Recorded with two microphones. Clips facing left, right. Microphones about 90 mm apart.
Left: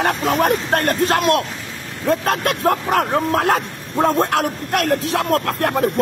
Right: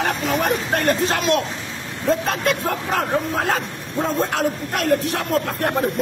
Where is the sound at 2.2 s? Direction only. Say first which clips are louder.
Left 2 dB; 70° left (ahead or behind).